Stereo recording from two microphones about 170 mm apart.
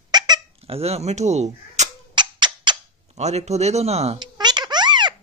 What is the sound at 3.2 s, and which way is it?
Speech, 40° right (ahead or behind).